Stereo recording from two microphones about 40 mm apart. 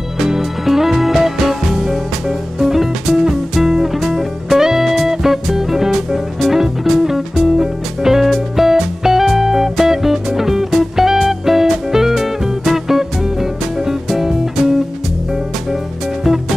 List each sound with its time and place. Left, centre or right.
0.3 s music: centre